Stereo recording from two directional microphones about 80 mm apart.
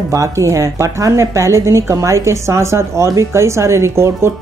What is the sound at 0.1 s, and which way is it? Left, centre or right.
A woman's voice, right.